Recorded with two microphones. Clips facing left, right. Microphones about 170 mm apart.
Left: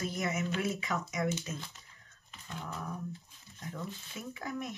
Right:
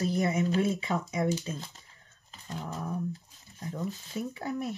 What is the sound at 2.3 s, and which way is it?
Dog, 35° right (ahead or behind).